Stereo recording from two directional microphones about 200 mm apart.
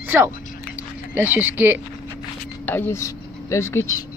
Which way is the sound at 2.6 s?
10° left (ahead or behind).